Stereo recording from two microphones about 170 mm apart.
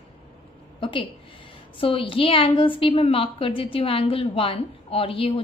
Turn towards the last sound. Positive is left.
turn(degrees=35)  # may be behind; listen again after turning